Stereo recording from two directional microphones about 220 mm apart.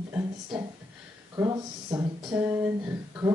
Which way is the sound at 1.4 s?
20° right (ahead or behind).